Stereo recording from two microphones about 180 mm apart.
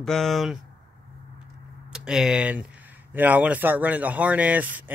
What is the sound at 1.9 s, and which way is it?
Speech, 5° right (ahead or behind).